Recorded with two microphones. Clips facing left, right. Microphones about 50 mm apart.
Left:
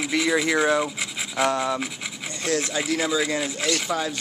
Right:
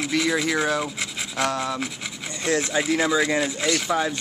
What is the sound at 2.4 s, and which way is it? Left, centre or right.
Speech, right.